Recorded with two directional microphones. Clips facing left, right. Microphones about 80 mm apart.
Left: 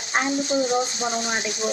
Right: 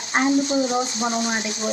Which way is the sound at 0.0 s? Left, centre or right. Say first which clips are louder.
Right 4 dB; right.